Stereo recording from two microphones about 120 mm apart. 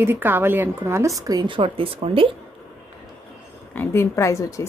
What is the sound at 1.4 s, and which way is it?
Speech, 45° right (ahead or behind).